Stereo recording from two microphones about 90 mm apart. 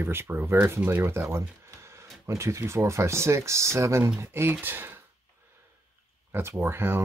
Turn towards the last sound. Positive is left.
turn(degrees=-25)  # may be behind; listen again after turning